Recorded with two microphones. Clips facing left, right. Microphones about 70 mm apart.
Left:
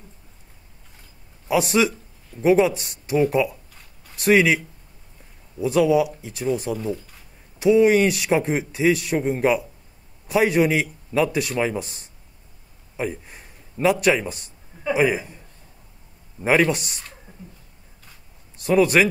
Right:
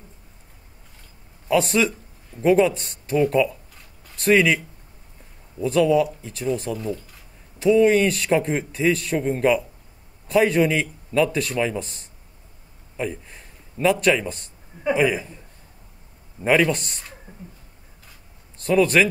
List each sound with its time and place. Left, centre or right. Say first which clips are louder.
1.5 s a man's voice: even; centre
5.6 s a man's voice: even; centre
12.9 s a sound: left 1 dB; centre
14.0 s a man's voice: even; centre
16.4 s a man's voice: even; centre
18.6 s a man's voice: left 1 dB; centre